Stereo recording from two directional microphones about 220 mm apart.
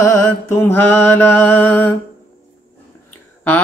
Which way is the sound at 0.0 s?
15° left (ahead or behind).